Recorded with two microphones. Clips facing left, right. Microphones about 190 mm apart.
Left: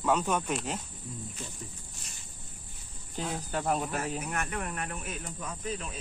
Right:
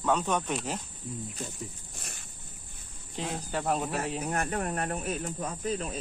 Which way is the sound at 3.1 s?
Centre (ahead or behind).